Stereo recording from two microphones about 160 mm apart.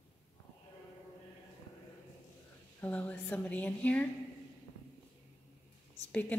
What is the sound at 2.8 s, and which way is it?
A woman's voice, 10° left (ahead or behind).